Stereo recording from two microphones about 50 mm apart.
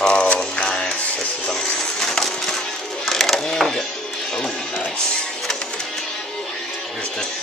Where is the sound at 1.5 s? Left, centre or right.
Centre.